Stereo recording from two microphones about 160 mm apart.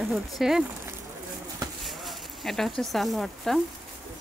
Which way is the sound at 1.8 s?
Centre (ahead or behind).